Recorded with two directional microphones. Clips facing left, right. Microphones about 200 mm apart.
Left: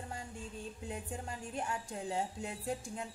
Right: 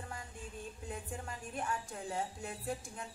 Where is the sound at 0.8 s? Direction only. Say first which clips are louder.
Left 2 dB; 25° left (ahead or behind).